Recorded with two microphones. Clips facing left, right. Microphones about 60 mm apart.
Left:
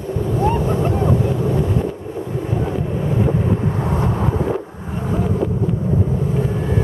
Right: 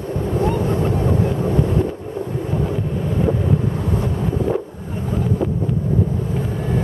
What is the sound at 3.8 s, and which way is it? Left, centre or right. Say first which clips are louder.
Vehicle: left 2 dB; left.